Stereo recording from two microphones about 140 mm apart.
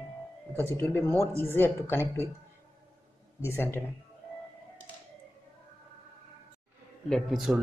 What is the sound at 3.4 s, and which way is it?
Speech, 15° left (ahead or behind).